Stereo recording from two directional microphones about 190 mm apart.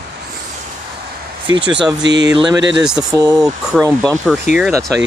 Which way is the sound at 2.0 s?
65° right (ahead or behind).